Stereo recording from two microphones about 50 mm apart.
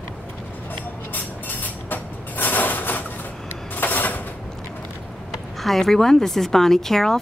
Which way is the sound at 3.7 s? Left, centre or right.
Left.